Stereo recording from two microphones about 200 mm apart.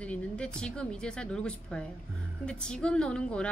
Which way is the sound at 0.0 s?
5° left (ahead or behind).